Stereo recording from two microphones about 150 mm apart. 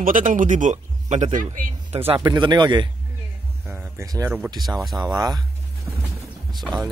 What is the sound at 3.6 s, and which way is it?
Speech, 15° right (ahead or behind).